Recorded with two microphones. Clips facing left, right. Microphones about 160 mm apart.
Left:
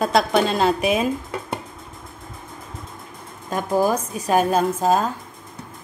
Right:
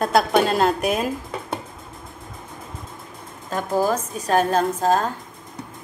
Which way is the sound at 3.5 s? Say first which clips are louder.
Left 1 dB; 15° left (ahead or behind).